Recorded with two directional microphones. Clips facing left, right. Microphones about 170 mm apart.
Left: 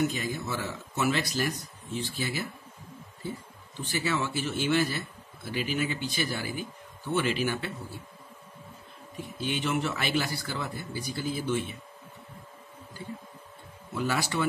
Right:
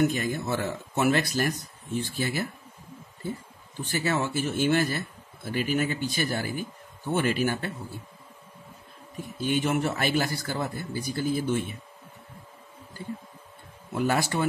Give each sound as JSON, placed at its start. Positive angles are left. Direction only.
{"t": 0.0, "sound": "speech", "side_deg": -55}
{"t": 3.8, "sound": "speech", "side_deg": -50}
{"t": 9.4, "sound": "speech", "side_deg": -45}
{"t": 13.9, "sound": "speech", "side_deg": -50}